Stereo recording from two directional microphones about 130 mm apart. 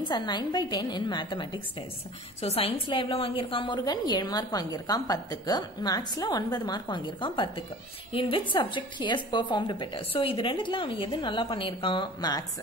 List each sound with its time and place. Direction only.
0.1 s a woman's voice: 35° left (ahead or behind)